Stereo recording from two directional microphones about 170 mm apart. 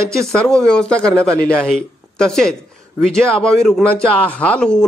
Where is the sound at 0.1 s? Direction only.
Centre (ahead or behind).